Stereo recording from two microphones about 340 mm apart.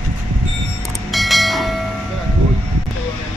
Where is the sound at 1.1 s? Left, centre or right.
Centre.